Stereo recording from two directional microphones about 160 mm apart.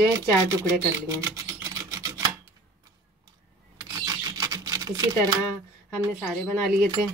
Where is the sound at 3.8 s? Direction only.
20° right (ahead or behind).